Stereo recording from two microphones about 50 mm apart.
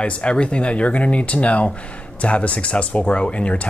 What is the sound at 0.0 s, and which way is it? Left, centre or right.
Speech, left.